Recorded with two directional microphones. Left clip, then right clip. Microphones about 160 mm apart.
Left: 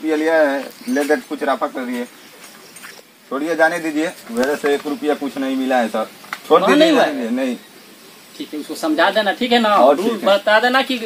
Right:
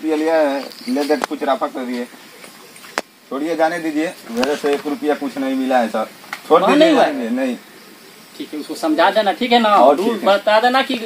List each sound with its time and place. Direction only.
0.0 s speech: 5° left (ahead or behind)
3.3 s speech: 5° left (ahead or behind)
3.8 s speech: 5° right (ahead or behind)
4.5 s speech: 10° left (ahead or behind)
8.8 s speech: 10° left (ahead or behind)